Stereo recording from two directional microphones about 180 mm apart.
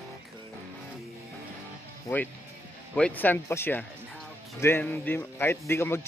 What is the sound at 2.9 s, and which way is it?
A man's voice, 5° left (ahead or behind).